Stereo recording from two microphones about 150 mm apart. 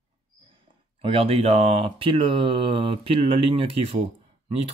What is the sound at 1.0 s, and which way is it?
Speech, 40° right (ahead or behind).